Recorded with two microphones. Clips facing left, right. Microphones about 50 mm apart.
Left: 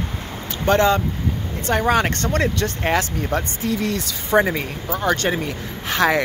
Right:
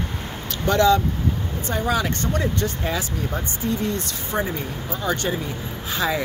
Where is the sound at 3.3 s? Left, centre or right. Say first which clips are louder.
Left 4 dB; left.